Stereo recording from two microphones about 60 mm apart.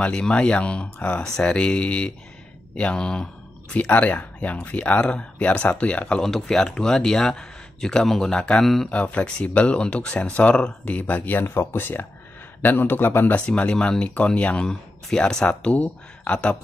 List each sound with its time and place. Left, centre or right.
0.0 s speech: centre
3.7 s speech: left
6.2 s speech: centre
8.8 s speech: left
11.4 s a man's voice: left
13.5 s speech: centre
15.4 s speech: left